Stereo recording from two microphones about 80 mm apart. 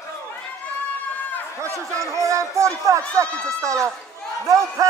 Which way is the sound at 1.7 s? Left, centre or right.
Right.